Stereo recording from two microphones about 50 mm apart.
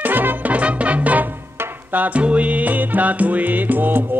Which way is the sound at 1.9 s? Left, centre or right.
Right.